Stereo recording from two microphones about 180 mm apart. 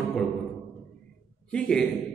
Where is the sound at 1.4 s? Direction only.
5° left (ahead or behind).